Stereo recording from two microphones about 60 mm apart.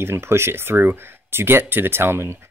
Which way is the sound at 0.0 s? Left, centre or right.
Right.